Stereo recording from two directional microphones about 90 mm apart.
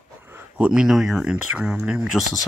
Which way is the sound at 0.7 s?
5° right (ahead or behind).